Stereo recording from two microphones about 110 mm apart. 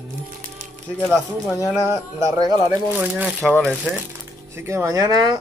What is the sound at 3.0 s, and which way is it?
Speech, 15° right (ahead or behind).